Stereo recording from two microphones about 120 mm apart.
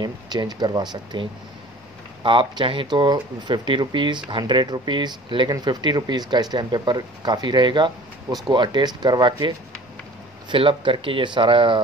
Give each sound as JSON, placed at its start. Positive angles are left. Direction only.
{"t": 0.0, "sound": "speech", "side_deg": -35}
{"t": 10.5, "sound": "speech", "side_deg": -45}